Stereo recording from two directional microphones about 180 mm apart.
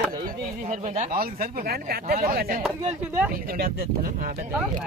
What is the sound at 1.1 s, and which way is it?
Speech, 55° right (ahead or behind).